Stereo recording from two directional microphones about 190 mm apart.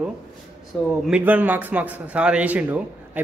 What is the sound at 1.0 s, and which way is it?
A man's voice, 5° right (ahead or behind).